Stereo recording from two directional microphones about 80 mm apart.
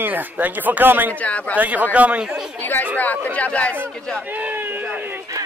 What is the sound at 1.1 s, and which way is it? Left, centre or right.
Speech, centre.